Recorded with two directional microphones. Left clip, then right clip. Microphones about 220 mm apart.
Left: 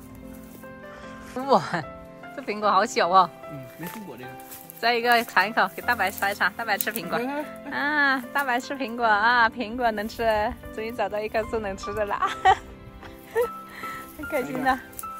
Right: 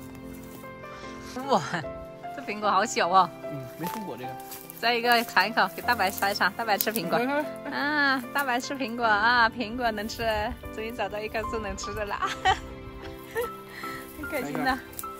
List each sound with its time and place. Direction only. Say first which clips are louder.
1.3 s speech: left 4 dB; 10° right (ahead or behind)
4.8 s a woman's voice: left 2 dB; 15° right (ahead or behind)
13.7 s music: left 2 dB; 15° right (ahead or behind)